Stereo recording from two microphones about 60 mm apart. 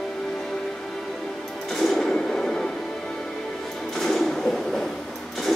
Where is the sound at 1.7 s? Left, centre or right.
Centre.